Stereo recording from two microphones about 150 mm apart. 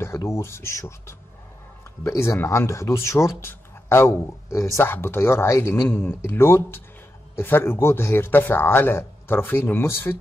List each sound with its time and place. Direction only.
0.0 s a man's voice: 20° left (ahead or behind)